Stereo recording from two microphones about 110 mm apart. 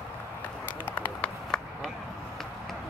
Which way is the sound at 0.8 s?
15° left (ahead or behind).